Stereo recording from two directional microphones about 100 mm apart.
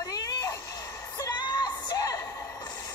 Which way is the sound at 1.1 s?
45° left (ahead or behind).